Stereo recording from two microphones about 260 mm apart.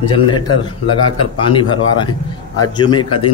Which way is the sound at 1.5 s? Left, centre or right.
Centre.